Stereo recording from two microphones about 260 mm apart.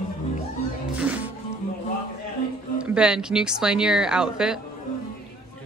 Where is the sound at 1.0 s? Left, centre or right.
Centre.